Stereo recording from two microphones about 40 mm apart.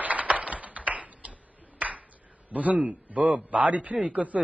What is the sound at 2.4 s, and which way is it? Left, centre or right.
A man's voice, right.